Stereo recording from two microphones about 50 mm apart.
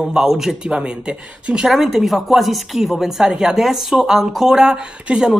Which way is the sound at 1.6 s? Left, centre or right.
Centre.